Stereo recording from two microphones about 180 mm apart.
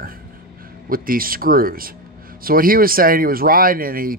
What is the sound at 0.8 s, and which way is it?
Speech, 50° right (ahead or behind).